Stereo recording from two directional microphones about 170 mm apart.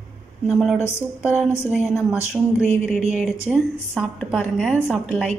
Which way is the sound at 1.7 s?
5° right (ahead or behind).